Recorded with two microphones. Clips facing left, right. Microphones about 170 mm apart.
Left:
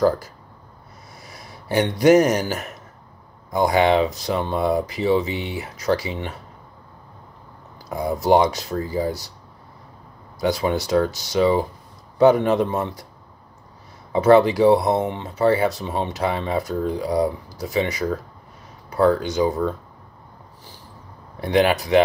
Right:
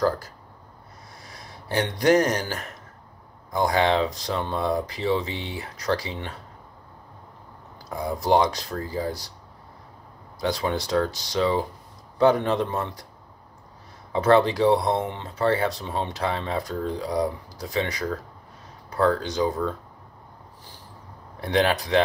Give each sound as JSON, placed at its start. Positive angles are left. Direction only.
{"t": 1.2, "sound": "speech", "side_deg": 5}
{"t": 7.9, "sound": "speech", "side_deg": 5}
{"t": 10.4, "sound": "speech", "side_deg": 10}
{"t": 14.1, "sound": "speech", "side_deg": 10}
{"t": 15.0, "sound": "speech", "side_deg": 15}
{"t": 21.4, "sound": "speech", "side_deg": 5}